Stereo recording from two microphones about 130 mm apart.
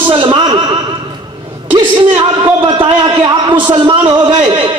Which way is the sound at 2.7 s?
35° right (ahead or behind).